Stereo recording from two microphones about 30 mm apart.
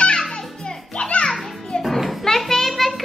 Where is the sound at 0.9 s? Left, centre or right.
Left.